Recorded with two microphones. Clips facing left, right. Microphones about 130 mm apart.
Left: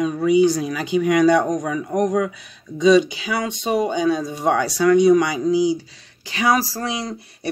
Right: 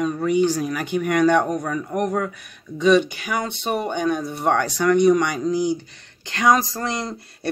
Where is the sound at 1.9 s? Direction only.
10° right (ahead or behind).